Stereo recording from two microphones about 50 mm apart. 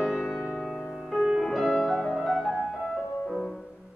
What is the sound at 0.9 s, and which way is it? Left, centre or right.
Music, centre.